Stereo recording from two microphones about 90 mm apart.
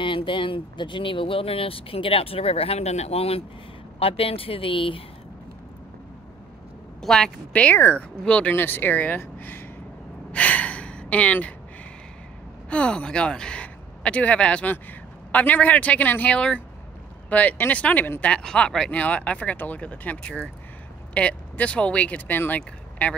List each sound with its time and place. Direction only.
0.0 s speech: 70° left (ahead or behind)
7.0 s speech: 5° left (ahead or behind)
7.7 s speech: 25° left (ahead or behind)
8.3 s speech: 15° left (ahead or behind)
10.3 s gasp: 15° left (ahead or behind)
12.6 s speech: 10° left (ahead or behind)
18.3 s speech: 10° left (ahead or behind)
22.6 s a sound: 15° left (ahead or behind)